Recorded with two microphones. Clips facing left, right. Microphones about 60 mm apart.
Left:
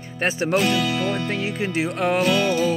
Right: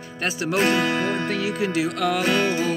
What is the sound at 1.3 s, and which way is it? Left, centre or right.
Music, left.